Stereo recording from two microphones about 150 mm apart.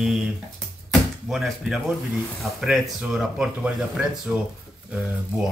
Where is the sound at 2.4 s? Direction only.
Centre (ahead or behind).